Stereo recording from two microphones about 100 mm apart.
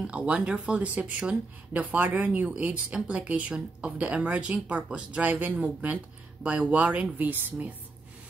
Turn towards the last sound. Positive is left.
turn(degrees=-15)  # may be behind; listen again after turning